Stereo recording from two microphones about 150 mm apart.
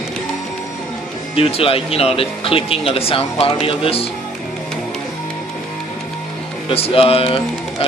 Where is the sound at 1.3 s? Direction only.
40° left (ahead or behind).